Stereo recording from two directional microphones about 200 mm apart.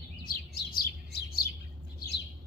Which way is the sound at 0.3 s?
50° left (ahead or behind).